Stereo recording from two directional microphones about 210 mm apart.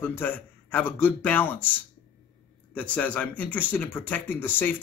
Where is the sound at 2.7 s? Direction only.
5° left (ahead or behind).